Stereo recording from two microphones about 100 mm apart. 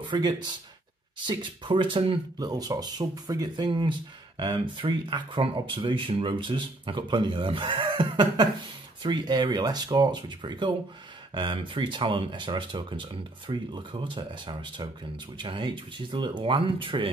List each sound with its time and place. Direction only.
0.0 s speech: 45° right (ahead or behind)
2.3 s speech: 40° right (ahead or behind); by 17.1 s 55° right (ahead or behind)